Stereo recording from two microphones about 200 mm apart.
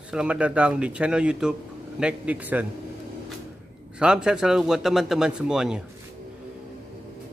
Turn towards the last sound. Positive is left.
turn(degrees=-5)  # may be behind; listen again after turning